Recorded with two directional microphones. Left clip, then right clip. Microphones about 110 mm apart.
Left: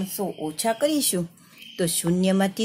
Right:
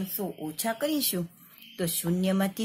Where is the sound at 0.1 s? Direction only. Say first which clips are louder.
Left 6 dB; centre (ahead or behind).